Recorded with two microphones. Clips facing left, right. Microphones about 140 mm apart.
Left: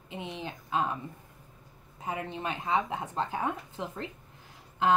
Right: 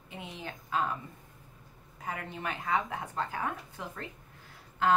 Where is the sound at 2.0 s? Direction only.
20° left (ahead or behind).